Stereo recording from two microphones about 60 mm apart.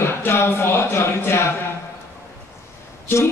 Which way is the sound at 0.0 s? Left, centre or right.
Left.